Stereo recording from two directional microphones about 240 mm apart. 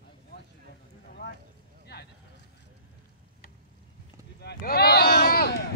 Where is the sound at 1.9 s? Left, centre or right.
Left.